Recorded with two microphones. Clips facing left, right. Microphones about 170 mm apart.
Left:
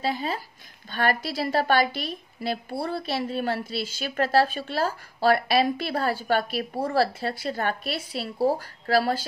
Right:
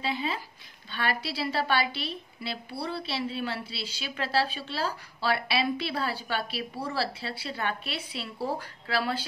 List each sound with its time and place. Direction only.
0.0 s a woman's voice: 40° left (ahead or behind)